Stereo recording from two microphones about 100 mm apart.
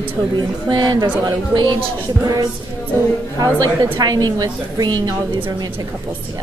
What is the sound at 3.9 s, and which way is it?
Speech, 45° right (ahead or behind).